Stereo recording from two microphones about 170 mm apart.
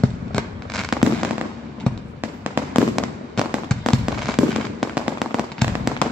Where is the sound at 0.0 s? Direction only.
5° left (ahead or behind).